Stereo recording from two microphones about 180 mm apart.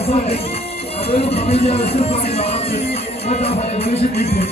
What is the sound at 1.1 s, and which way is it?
Speech, 35° left (ahead or behind).